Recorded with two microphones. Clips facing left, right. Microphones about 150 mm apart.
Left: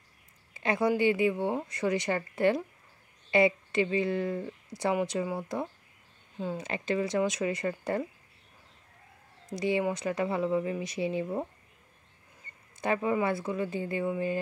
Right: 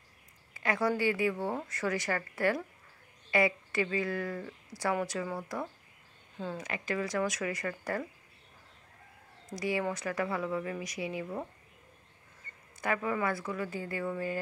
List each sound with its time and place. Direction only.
0.6 s speech: 20° left (ahead or behind)
9.6 s speech: 25° left (ahead or behind)
12.8 s speech: 25° left (ahead or behind)